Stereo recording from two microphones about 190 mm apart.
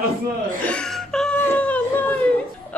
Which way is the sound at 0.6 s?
5° left (ahead or behind).